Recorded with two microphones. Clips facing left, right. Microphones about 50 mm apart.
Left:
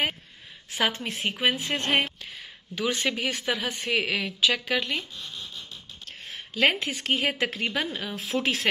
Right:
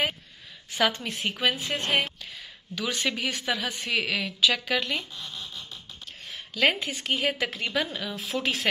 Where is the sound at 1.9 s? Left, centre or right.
Left.